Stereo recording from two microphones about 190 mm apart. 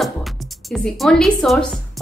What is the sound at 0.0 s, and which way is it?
A woman's voice, centre (ahead or behind).